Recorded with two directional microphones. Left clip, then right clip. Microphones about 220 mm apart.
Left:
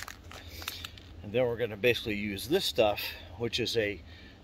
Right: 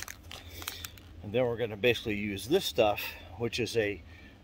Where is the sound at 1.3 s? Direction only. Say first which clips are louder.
Left 1 dB; 30° right (ahead or behind).